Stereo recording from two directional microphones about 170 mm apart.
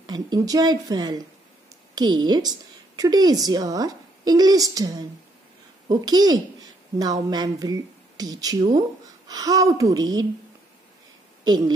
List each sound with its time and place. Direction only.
0.0 s a woman's voice: 25° right (ahead or behind)
11.4 s a woman's voice: 25° right (ahead or behind)